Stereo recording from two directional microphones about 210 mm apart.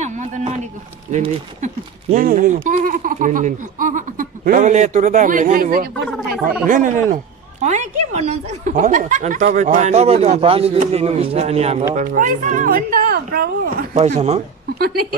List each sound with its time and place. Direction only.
0.0 s a sound: 35° right (ahead or behind)
1.1 s a man's voice: 30° right (ahead or behind)
13.9 s a man's voice: 30° right (ahead or behind)